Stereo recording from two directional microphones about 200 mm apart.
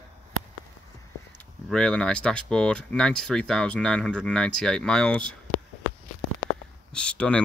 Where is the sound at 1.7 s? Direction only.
5° left (ahead or behind).